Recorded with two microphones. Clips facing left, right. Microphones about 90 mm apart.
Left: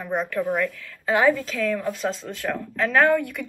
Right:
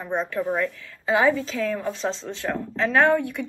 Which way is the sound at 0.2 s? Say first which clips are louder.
Left 1 dB; 25° right (ahead or behind).